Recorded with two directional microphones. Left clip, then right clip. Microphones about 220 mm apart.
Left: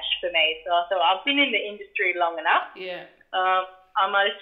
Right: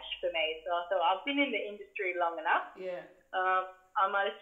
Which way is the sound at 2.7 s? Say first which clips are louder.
Left 5 dB; 80° left.